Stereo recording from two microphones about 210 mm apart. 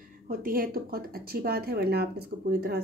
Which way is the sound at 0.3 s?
45° right (ahead or behind).